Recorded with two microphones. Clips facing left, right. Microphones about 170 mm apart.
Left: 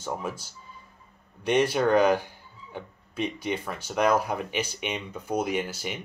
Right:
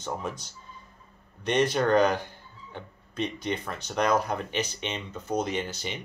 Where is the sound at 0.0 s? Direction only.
5° left (ahead or behind).